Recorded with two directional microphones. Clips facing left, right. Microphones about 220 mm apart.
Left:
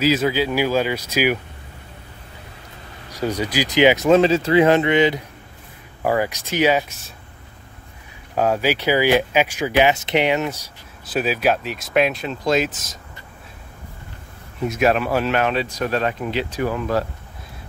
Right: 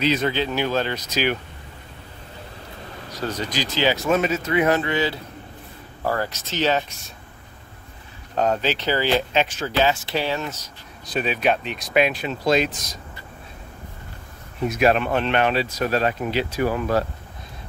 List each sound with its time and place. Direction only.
0.0 s speech: 5° left (ahead or behind)
3.1 s speech: 10° left (ahead or behind)
8.4 s speech: 10° left (ahead or behind)
14.7 s speech: centre (ahead or behind)